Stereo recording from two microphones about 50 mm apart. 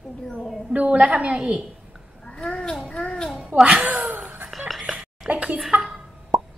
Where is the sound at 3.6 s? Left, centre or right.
Right.